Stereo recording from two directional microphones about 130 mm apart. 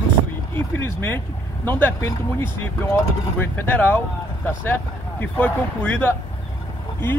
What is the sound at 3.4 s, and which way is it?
Speech, 15° left (ahead or behind).